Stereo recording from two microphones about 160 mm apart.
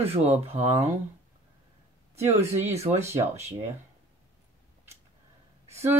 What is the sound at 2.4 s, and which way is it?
Speech, 45° right (ahead or behind).